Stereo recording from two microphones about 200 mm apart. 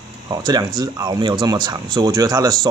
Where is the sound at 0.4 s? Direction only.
20° right (ahead or behind).